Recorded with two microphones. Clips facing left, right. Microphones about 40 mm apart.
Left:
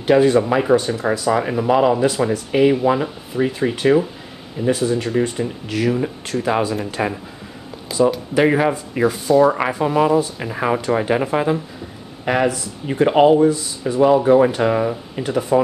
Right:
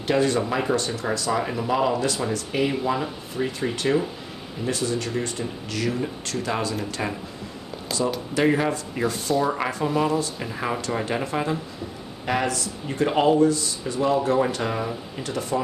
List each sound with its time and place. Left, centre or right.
0.0 s speech: centre
10.5 s speech: left